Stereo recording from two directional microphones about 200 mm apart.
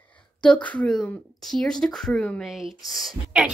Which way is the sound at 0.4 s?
5° left (ahead or behind).